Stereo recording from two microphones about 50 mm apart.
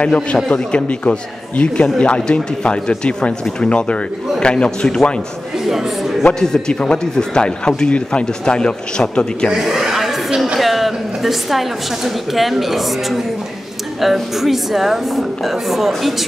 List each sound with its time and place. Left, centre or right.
0.0 s speech: left
5.7 s speech: centre
6.7 s speech: centre
9.5 s a man's voice: centre